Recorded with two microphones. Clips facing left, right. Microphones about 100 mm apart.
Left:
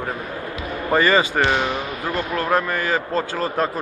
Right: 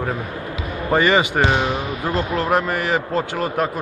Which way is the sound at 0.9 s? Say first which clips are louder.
Right 1 dB; 15° right (ahead or behind).